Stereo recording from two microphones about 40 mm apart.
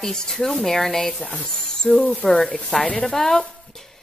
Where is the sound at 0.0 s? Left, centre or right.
Centre.